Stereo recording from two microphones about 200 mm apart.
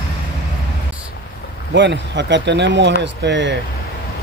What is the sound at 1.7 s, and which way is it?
Speech, 60° right (ahead or behind).